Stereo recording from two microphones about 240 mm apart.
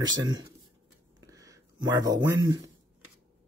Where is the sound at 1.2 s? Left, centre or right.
Centre.